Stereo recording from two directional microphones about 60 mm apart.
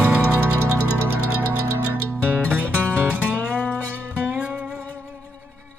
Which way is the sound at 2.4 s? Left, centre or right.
Left.